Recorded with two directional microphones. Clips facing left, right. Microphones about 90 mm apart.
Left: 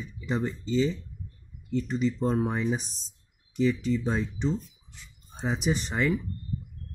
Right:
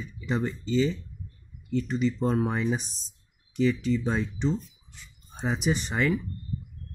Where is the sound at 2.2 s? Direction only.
Centre (ahead or behind).